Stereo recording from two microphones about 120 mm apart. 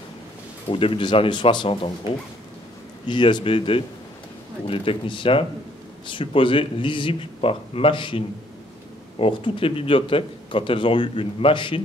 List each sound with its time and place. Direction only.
0.7 s speech: 50° left (ahead or behind)
9.2 s speech: 50° left (ahead or behind)